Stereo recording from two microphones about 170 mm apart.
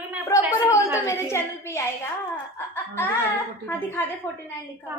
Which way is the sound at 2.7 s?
10° left (ahead or behind).